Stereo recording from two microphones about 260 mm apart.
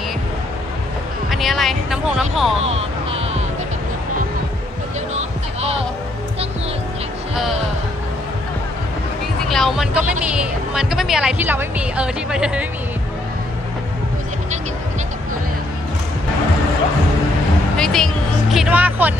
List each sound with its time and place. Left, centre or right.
1.3 s speech: centre
2.6 s a sound: right
5.1 s music: right
9.5 s speech: centre
17.7 s speech: centre